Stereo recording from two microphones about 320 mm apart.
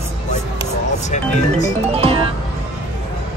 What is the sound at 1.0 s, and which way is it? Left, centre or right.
Speech, left.